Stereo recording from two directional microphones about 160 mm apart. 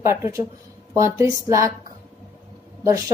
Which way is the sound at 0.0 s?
15° right (ahead or behind).